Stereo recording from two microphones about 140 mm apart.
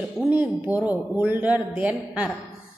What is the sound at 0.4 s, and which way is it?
A man's voice, 10° right (ahead or behind).